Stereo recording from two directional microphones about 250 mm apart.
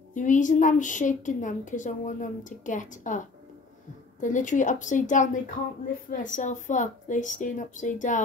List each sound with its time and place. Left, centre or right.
0.1 s a woman's voice: left